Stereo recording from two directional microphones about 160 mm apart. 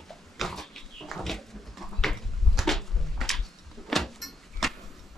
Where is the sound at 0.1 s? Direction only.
Centre (ahead or behind).